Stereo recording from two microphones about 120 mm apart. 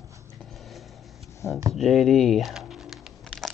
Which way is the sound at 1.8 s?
Centre (ahead or behind).